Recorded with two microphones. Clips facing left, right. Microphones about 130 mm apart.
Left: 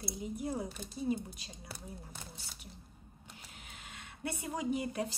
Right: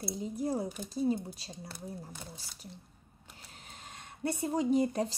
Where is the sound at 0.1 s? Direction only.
35° right (ahead or behind).